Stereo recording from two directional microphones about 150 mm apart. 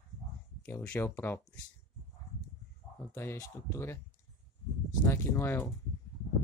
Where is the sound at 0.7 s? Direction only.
15° left (ahead or behind).